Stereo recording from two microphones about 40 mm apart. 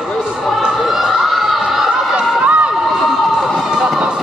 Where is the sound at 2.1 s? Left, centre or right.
Right.